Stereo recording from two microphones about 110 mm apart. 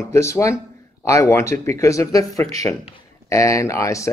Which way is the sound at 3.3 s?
30° left (ahead or behind).